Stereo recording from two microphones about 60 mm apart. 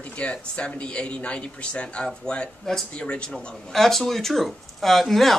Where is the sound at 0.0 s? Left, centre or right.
Left.